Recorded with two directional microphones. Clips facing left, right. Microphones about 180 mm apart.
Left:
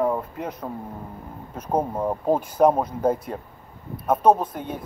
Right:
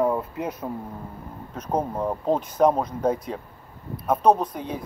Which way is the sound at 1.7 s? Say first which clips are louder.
Left 2 dB; 10° left (ahead or behind).